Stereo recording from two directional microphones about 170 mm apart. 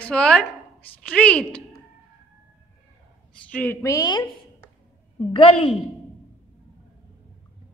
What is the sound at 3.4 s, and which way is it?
Speech, 10° left (ahead or behind).